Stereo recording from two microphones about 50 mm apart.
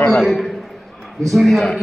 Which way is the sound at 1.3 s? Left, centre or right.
Centre.